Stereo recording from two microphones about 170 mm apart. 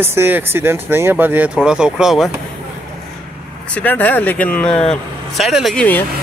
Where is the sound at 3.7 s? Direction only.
10° left (ahead or behind).